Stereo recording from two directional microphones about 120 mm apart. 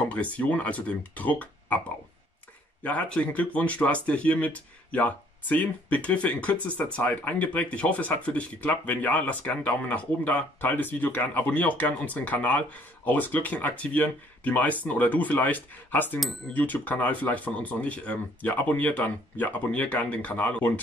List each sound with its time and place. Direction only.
0.1 s speech: 10° left (ahead or behind)
2.8 s speech: 10° left (ahead or behind)